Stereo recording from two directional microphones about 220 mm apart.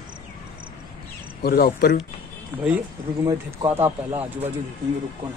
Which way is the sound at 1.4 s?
45° left (ahead or behind).